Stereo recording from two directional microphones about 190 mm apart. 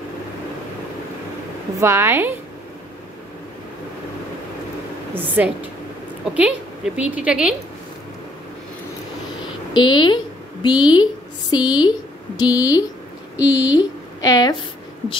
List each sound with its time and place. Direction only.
1.8 s a woman's voice: 15° right (ahead or behind)
5.1 s a woman's voice: 10° right (ahead or behind)
9.8 s a woman's voice: 25° left (ahead or behind)